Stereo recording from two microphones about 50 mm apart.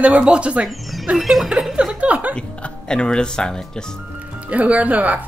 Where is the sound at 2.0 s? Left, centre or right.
Right.